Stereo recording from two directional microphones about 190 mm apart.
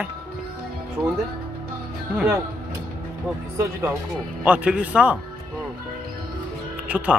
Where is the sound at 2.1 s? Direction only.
10° right (ahead or behind).